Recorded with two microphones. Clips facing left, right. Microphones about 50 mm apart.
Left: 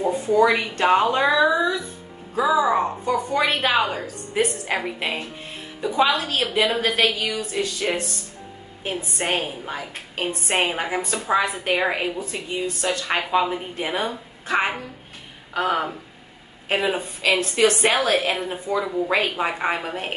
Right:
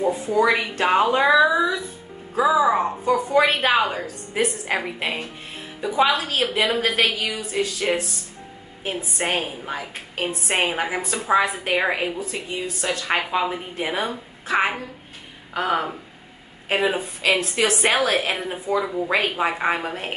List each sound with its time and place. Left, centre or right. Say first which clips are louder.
0.0 s a woman's voice: left 1 dB; centre